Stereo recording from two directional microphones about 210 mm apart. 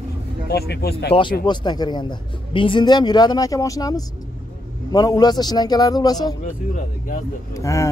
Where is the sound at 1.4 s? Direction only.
20° left (ahead or behind).